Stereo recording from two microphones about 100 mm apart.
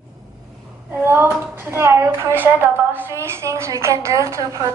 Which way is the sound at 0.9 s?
25° right (ahead or behind).